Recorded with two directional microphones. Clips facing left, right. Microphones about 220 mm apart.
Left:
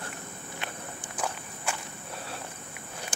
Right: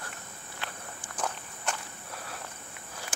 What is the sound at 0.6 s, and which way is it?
Walk, 20° left (ahead or behind).